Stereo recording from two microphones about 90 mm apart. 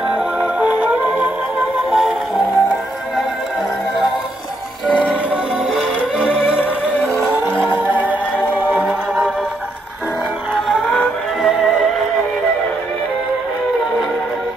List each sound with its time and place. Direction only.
0.1 s music: 10° right (ahead or behind)
1.9 s music: centre (ahead or behind)
5.3 s music: 10° right (ahead or behind)
6.6 s music: 20° left (ahead or behind)
7.6 s music: 20° right (ahead or behind)
11.4 s music: centre (ahead or behind)